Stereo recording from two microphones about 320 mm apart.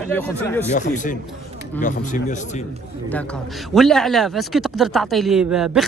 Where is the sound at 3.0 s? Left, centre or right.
Centre.